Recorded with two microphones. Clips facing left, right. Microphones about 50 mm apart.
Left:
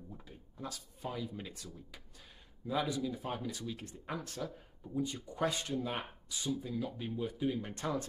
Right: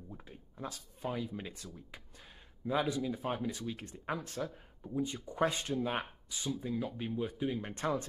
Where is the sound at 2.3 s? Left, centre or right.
Centre.